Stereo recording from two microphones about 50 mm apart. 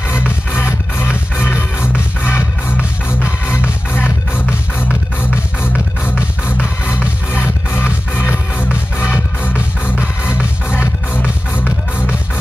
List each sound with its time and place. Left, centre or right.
0.6 s music: left
3.9 s music: left
7.4 s music: left